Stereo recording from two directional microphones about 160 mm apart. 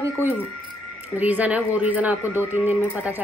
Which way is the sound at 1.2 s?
10° right (ahead or behind).